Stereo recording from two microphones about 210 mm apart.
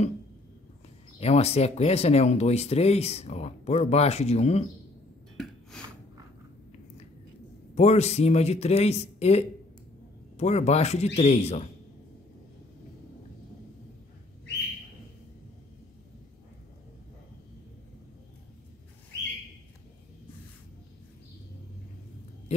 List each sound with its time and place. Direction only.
1.2 s speech: 30° left (ahead or behind)
5.7 s snort: 5° left (ahead or behind)
7.7 s speech: 30° left (ahead or behind)